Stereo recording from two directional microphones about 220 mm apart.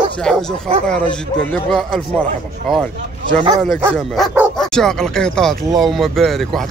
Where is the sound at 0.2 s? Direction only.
5° left (ahead or behind).